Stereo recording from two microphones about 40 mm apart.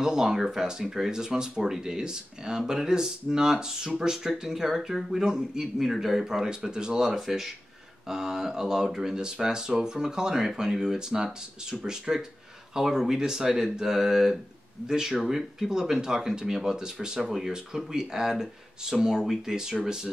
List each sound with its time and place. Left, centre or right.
0.0 s speech: centre